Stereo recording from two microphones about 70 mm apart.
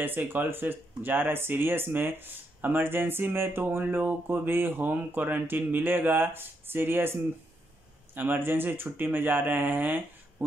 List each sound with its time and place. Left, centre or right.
0.0 s speech: right